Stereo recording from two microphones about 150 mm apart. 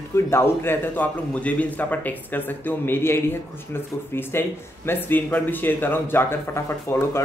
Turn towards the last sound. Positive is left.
turn(degrees=15)  # may be behind; listen again after turning